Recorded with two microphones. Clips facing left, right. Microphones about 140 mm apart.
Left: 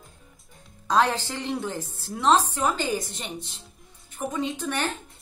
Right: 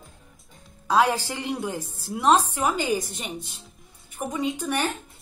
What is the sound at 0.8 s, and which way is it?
A woman's voice, 10° right (ahead or behind).